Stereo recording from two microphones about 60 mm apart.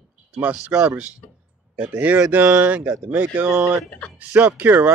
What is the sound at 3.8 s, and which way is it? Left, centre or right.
Speech, centre.